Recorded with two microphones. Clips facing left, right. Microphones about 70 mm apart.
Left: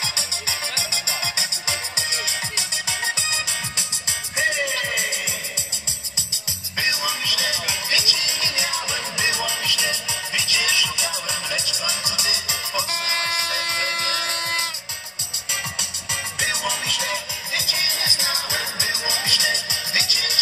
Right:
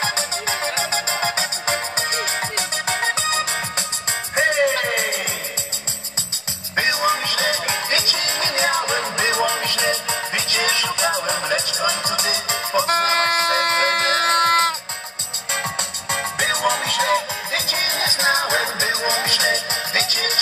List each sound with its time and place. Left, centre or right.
0.0 s music: right
6.7 s music: right
16.1 s music: right